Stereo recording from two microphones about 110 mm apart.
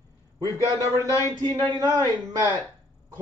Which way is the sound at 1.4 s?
40° right (ahead or behind).